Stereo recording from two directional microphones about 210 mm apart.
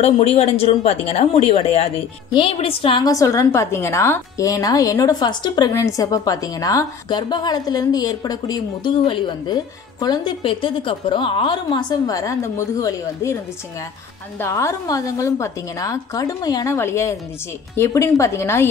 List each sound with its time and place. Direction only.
0.0 s speech: 30° left (ahead or behind); by 13.4 s 15° left (ahead or behind)
14.4 s a woman's voice: 15° left (ahead or behind)